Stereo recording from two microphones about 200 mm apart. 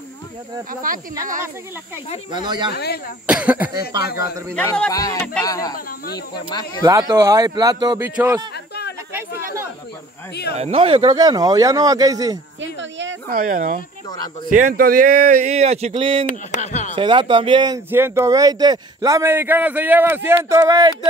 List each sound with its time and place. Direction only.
0.8 s speech: 45° right (ahead or behind)
2.4 s speech: 20° right (ahead or behind)
2.7 s speech: 50° left (ahead or behind)
3.3 s speech: 5° right (ahead or behind)
4.0 s speech: 50° left (ahead or behind)
4.6 s speech: 5° left (ahead or behind)
4.9 s speech: 20° left (ahead or behind)
6.8 s speech: 15° right (ahead or behind)
8.0 s speech: 10° right (ahead or behind)
10.5 s speech: 30° right (ahead or behind)
13.3 s speech: 45° right (ahead or behind); by 16.3 s 25° right (ahead or behind)
16.3 s speech: 35° left (ahead or behind)
16.9 s speech: 25° right (ahead or behind)